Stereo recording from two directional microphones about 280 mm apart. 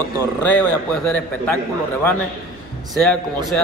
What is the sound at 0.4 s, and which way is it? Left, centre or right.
A man's voice, centre.